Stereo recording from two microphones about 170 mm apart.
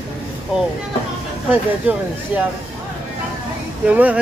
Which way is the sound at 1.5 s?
10° right (ahead or behind).